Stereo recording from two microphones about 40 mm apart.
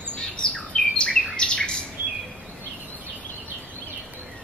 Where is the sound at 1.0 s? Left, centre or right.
Left.